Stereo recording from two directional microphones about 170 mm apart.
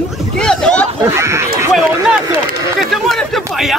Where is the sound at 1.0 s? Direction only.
15° right (ahead or behind).